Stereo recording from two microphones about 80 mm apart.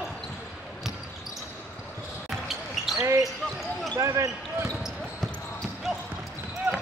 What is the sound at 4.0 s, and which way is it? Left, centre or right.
Basketball bounce, right.